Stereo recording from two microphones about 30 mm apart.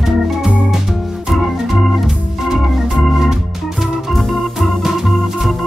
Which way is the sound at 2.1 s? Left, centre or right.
Centre.